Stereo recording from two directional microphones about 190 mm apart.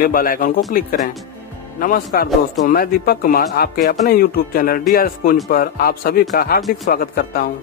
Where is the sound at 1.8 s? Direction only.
50° left (ahead or behind).